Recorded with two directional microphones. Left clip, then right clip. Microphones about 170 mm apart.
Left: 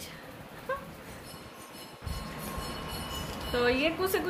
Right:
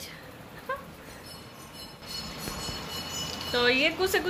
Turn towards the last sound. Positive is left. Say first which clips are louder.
# right 3 dB
turn(degrees=-10)  # may be behind; listen again after turning